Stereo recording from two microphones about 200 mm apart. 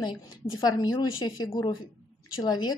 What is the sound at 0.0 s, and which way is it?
A woman's voice, 20° left (ahead or behind).